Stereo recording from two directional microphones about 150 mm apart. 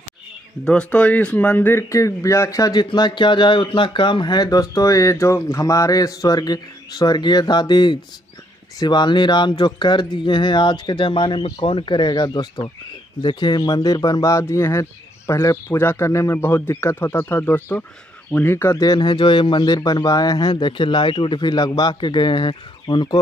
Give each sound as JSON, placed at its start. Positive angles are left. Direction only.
{"t": 0.7, "sound": "speech", "side_deg": 5}